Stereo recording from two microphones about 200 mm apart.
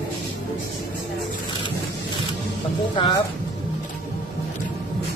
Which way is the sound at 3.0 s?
20° left (ahead or behind).